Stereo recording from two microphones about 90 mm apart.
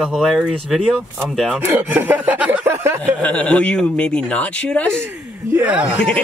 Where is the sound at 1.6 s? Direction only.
25° right (ahead or behind).